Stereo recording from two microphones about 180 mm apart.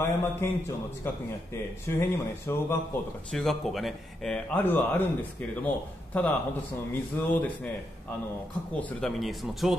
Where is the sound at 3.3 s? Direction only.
Centre (ahead or behind).